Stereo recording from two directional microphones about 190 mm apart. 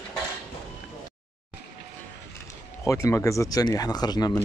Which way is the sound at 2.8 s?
15° left (ahead or behind).